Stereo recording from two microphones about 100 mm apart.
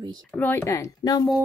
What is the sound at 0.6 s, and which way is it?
Speech, 30° left (ahead or behind).